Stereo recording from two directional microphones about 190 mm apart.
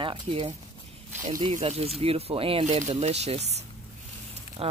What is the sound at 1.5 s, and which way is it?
Speech, 35° right (ahead or behind).